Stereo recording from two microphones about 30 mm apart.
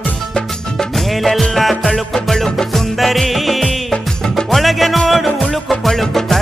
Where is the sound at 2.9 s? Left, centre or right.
Centre.